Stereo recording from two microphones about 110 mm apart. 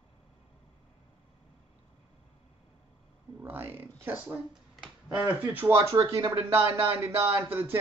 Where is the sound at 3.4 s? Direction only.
20° right (ahead or behind).